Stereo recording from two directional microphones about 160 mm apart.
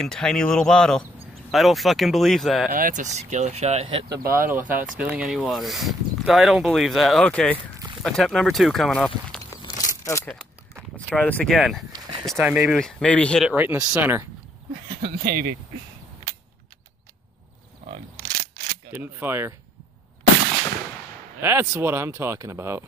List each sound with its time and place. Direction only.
0.0 s speech: 5° left (ahead or behind)
2.7 s speech: 55° right (ahead or behind)
4.3 s speech: 10° right (ahead or behind); by 9.4 s 5° left (ahead or behind)
10.0 s speech: 20° left (ahead or behind); by 12.7 s 5° right (ahead or behind)
12.7 s speech: 5° left (ahead or behind)
13.5 s speech: 10° right (ahead or behind)
14.9 s speech: 70° right (ahead or behind)
17.8 s a sound: 55° right (ahead or behind)
18.9 s speech: 10° right (ahead or behind)
21.4 s speech: 15° right (ahead or behind)